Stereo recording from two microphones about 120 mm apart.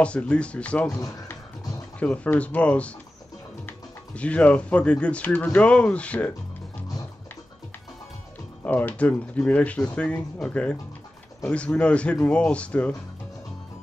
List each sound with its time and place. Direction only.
0.0 s speech: 10° left (ahead or behind)
0.9 s music: 25° left (ahead or behind)
2.0 s speech: 10° left (ahead or behind)
8.6 s speech: 15° left (ahead or behind)